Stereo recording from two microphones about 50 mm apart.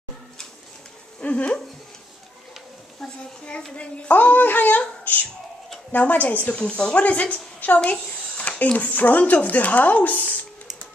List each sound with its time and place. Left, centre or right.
1.2 s a child's voice: left
3.0 s a child's voice: centre
4.1 s a woman's voice: left